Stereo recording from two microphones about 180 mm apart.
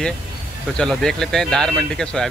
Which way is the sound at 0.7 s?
5° left (ahead or behind).